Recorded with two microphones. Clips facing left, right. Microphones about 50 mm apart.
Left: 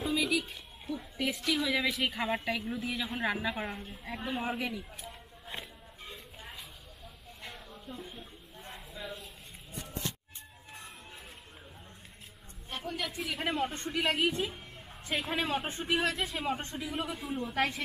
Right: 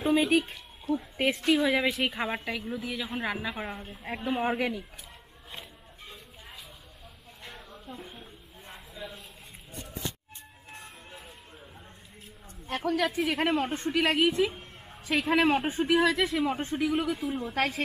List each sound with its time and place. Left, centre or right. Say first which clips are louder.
0.0 s a sound: right 7 dB; right
1.1 s a woman's voice: right 6 dB; right
2.0 s a woman's voice: right 1 dB; centre
4.0 s a woman's voice: right 6 dB; right
7.7 s a sound: right 2 dB; right
8.7 s a sound: right 2 dB; centre
12.6 s a woman's voice: right 9 dB; right
13.4 s a woman's voice: right 2 dB; right
17.5 s speech: right 2 dB; right